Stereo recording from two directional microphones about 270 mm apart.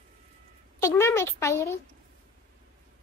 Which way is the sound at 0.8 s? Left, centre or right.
Centre.